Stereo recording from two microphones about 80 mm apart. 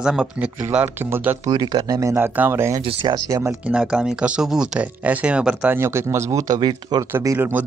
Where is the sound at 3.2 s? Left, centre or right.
Right.